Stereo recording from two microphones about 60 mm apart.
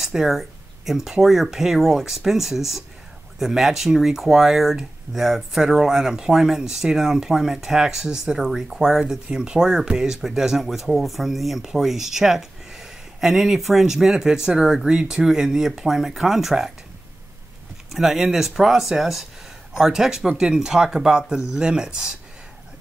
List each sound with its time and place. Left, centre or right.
0.0 s speech: centre
17.9 s speech: centre